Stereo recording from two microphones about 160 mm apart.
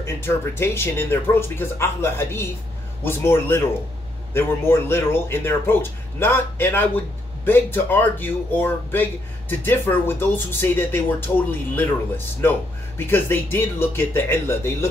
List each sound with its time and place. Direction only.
0.0 s speech: 15° left (ahead or behind)
12.4 s speech: 15° left (ahead or behind)